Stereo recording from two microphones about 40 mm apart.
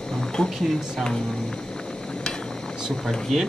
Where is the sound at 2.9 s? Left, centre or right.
Centre.